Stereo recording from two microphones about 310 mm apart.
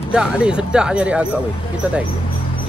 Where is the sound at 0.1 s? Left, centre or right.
Centre.